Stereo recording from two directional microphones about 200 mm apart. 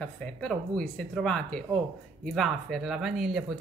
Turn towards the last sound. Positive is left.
turn(degrees=0)  # may be behind; listen again after turning